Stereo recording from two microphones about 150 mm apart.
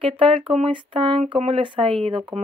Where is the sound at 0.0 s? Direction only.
35° right (ahead or behind).